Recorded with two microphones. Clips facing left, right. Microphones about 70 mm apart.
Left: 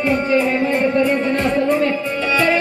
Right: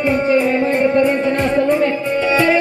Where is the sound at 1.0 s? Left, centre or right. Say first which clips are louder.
Right 2 dB; right.